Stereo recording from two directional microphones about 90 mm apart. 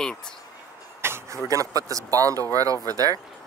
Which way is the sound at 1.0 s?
30° right (ahead or behind).